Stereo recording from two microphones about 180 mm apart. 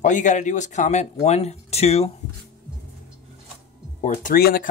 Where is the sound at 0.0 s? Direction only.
45° left (ahead or behind).